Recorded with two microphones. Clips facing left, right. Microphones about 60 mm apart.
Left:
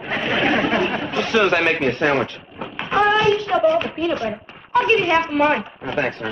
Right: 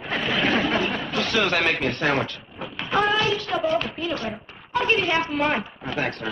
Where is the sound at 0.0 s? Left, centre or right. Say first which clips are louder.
Left 3 dB; centre.